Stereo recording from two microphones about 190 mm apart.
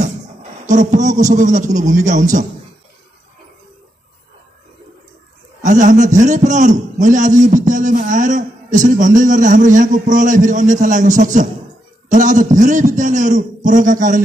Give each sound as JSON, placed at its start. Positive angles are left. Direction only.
{"t": 0.0, "sound": "a man's voice", "side_deg": -40}
{"t": 5.6, "sound": "a man's voice", "side_deg": -40}